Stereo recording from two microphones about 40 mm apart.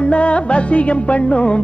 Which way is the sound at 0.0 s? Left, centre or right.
Left.